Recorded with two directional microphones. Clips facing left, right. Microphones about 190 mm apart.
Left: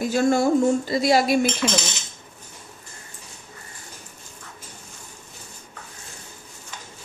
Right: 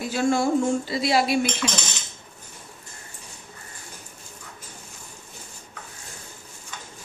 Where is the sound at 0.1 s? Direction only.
40° left (ahead or behind).